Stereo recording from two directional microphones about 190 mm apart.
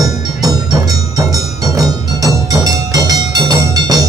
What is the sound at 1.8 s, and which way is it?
Music, 20° right (ahead or behind).